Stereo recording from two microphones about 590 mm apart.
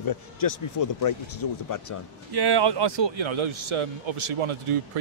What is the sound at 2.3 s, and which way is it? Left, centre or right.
A man's voice, right.